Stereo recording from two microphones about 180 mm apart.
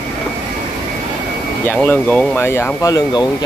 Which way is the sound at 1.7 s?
10° left (ahead or behind).